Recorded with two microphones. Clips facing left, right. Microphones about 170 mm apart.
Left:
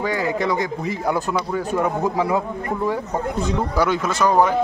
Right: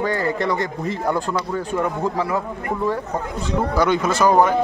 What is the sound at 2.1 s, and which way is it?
Speech, 20° left (ahead or behind).